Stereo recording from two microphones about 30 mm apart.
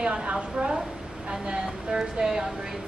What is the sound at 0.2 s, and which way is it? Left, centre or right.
A woman's voice, right.